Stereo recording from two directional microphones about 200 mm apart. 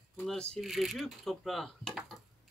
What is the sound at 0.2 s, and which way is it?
Speech, 5° left (ahead or behind).